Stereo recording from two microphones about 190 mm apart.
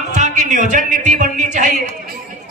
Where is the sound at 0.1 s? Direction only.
40° right (ahead or behind).